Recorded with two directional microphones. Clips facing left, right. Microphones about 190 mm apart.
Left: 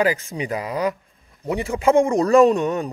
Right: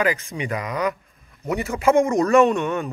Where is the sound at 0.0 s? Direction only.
35° left (ahead or behind).